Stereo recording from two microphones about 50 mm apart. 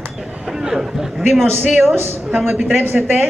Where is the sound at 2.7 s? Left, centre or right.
Right.